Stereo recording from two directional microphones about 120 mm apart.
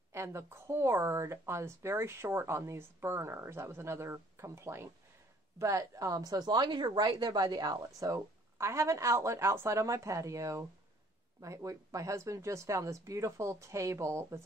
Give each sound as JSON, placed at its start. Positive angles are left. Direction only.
{"t": 0.1, "sound": "a woman's voice", "side_deg": -20}